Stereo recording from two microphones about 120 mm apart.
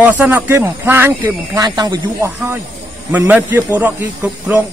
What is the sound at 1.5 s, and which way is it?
Speech, 35° right (ahead or behind).